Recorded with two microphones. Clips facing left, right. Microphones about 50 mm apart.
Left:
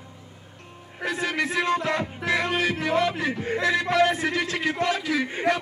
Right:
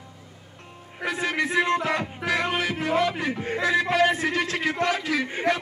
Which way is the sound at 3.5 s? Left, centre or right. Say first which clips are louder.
Even; centre.